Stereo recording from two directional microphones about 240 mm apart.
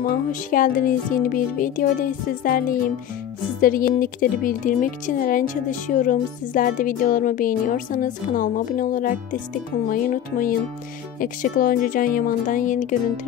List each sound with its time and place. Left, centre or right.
0.0 s speech: left